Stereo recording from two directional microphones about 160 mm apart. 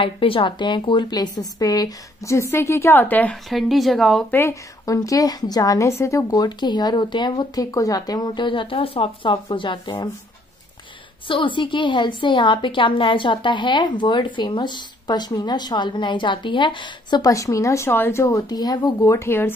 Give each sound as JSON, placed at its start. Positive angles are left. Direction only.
{"t": 0.0, "sound": "a woman's voice", "side_deg": 35}
{"t": 4.4, "sound": "a woman's voice", "side_deg": 20}
{"t": 11.2, "sound": "a woman's voice", "side_deg": 30}